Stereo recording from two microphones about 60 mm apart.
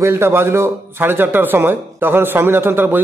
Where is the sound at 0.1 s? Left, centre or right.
Right.